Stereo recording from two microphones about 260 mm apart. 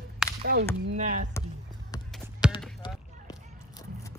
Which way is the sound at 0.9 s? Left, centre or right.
Right.